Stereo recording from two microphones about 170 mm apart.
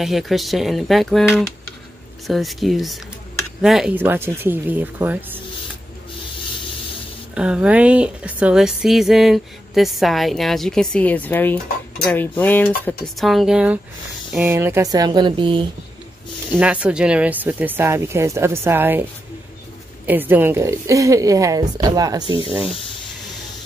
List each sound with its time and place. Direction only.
0.0 s a woman's voice: centre (ahead or behind)
7.3 s a woman's voice: 5° right (ahead or behind); by 15.6 s 30° right (ahead or behind)
16.5 s speech: 10° right (ahead or behind)
20.1 s a woman's voice: 10° right (ahead or behind); by 22.6 s 30° right (ahead or behind)